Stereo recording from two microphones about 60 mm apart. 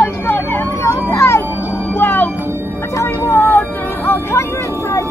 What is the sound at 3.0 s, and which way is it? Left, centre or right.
Vehicle, left.